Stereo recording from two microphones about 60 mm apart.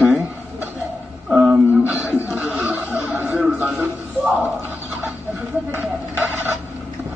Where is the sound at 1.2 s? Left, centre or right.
Centre.